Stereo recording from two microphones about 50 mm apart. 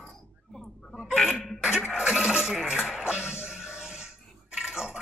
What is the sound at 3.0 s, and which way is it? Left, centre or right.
Music, centre.